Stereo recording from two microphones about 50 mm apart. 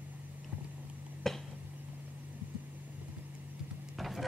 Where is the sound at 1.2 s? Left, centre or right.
Centre.